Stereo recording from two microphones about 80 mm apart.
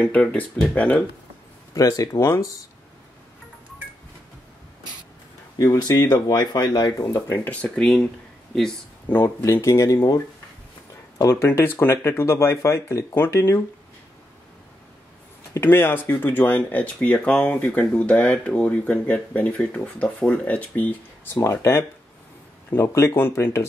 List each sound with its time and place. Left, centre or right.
0.0 s speech: centre
1.7 s speech: left
5.6 s speech: left
7.2 s speech: left
7.8 s speech: centre
9.2 s speech: left
11.3 s speech: left
15.6 s speech: left
21.4 s speech: left